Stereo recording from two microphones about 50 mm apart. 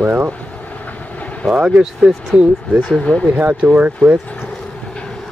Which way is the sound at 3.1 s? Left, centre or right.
Left.